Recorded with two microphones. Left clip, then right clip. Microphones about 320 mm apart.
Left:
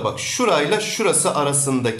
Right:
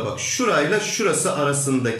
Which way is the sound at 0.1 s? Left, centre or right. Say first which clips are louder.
Right 1 dB; centre.